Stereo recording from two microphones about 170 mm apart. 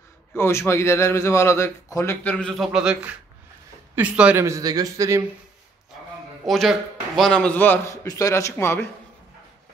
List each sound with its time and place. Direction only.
0.3 s a man's voice: 15° left (ahead or behind)
2.2 s a man's voice: 5° left (ahead or behind); by 5.2 s 20° right (ahead or behind)
6.4 s a man's voice: centre (ahead or behind)